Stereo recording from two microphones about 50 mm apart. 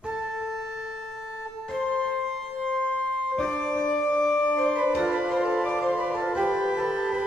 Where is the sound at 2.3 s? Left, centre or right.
Centre.